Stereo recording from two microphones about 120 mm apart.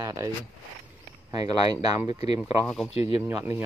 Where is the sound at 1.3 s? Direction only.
30° right (ahead or behind).